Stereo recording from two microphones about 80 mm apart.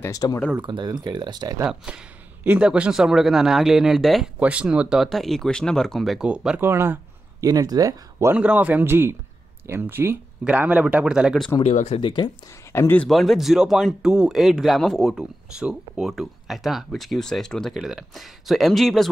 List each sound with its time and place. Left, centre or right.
0.1 s speech: left
0.6 s speech: right
1.9 s speech: centre
4.4 s speech: centre
6.2 s speech: centre
6.6 s a man's voice: right
7.3 s speech: right
8.4 s a man's voice: centre
10.4 s speech: centre
12.0 s speech: left
12.7 s speech: left
13.1 s speech: centre
17.7 s speech: centre